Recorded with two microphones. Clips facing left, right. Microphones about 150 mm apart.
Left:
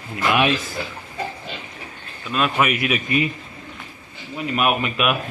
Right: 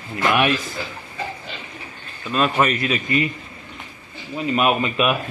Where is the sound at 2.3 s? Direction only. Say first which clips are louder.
Right 1 dB; 5° left (ahead or behind).